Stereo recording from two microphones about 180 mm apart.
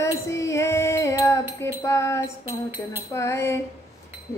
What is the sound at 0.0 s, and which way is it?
Music, 15° left (ahead or behind).